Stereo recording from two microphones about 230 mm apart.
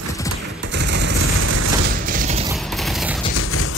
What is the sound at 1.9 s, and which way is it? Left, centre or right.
Mechanisms, right.